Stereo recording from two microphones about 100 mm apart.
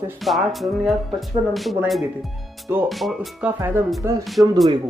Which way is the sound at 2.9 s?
Centre (ahead or behind).